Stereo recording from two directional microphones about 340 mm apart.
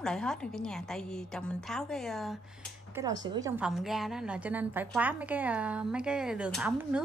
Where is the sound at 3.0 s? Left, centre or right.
Centre.